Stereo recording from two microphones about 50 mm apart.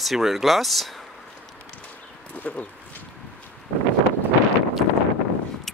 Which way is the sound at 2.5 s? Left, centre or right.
Left.